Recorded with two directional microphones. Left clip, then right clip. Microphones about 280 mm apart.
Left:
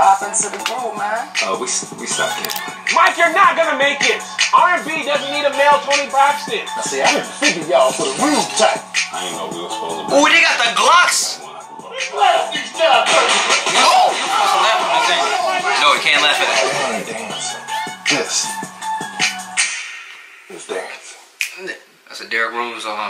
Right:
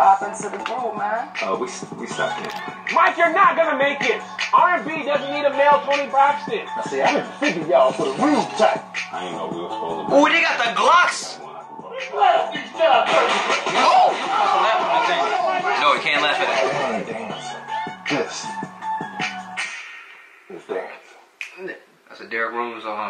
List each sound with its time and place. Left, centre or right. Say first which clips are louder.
0.0 s music: left 3 dB; centre
0.9 s speech: left 4 dB; centre
9.4 s music: left 3 dB; right
10.1 s speech: left 4 dB; centre
18.6 s music: left 3 dB; centre
22.5 s speech: left 3 dB; centre